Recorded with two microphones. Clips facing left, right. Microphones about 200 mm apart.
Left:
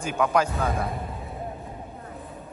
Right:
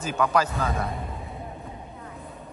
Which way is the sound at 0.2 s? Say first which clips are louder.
Left 1 dB; 10° left (ahead or behind).